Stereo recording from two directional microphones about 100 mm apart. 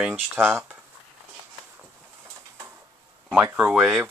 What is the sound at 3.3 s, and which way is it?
Speech, 15° right (ahead or behind).